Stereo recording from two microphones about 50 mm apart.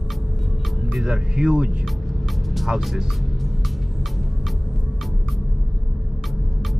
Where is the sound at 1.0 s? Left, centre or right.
Centre.